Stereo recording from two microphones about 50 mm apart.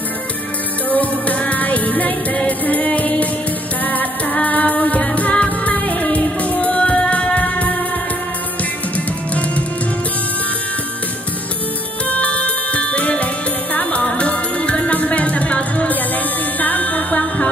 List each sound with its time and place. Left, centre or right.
0.8 s music: left
12.1 s music: left